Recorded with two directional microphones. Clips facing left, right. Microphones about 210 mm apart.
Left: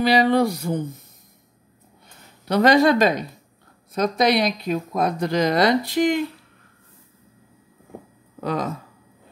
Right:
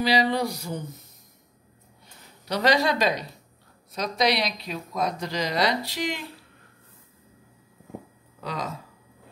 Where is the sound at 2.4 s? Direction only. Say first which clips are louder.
Left 7 dB; 55° left (ahead or behind).